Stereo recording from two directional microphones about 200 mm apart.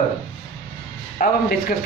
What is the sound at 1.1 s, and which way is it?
Speech, 40° left (ahead or behind).